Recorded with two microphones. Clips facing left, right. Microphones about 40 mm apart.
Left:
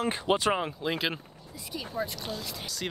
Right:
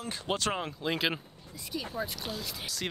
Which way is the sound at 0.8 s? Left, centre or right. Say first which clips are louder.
Even; centre.